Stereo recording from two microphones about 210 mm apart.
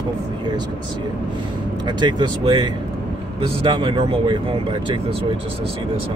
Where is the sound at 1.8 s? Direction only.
20° right (ahead or behind).